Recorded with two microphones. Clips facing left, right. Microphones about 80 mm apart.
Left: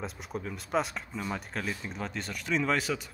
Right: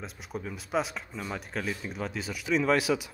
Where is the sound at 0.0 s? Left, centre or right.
Centre.